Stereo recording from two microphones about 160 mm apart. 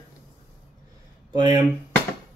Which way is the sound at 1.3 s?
25° right (ahead or behind).